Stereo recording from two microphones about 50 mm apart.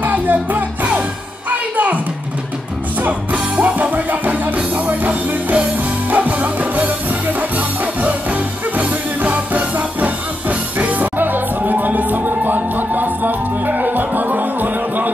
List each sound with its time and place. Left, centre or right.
0.0 s music: right
3.0 s music: right